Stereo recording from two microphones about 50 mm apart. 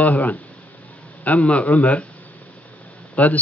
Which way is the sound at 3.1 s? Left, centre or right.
Left.